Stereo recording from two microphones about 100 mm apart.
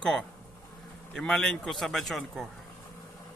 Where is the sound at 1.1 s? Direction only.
5° left (ahead or behind).